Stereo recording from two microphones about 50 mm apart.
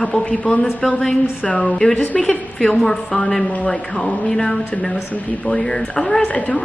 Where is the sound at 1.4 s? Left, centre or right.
Left.